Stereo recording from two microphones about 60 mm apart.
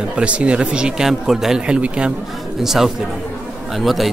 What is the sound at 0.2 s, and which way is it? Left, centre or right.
Speech, centre.